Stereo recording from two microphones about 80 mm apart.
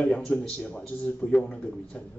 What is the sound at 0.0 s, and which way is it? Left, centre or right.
Speech, centre.